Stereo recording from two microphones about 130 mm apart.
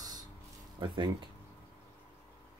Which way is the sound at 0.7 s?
40° right (ahead or behind).